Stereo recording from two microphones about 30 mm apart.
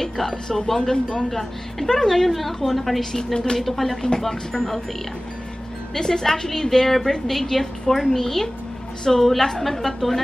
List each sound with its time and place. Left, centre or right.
0.0 s a woman's voice: centre
4.2 s a woman's voice: centre
5.9 s a woman's voice: centre